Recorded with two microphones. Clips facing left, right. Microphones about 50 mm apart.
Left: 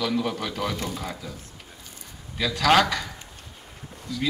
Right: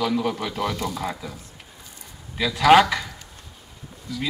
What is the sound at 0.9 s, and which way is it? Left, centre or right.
Speech, right.